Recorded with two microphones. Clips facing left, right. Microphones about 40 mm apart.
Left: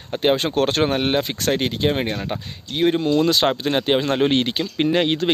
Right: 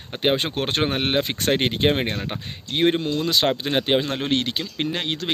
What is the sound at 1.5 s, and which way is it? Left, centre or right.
Speech, right.